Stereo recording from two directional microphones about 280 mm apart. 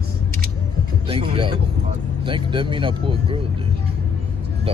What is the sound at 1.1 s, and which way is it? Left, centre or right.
Speech, centre.